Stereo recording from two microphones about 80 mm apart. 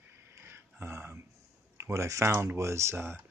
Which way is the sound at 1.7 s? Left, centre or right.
Right.